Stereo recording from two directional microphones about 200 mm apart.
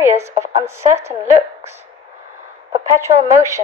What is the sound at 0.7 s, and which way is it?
A woman's voice, 15° right (ahead or behind).